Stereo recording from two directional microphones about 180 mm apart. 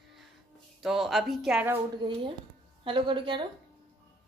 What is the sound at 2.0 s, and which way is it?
Music, 30° right (ahead or behind).